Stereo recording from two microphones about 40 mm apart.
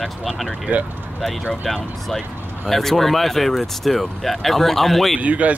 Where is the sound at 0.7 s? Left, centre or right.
Right.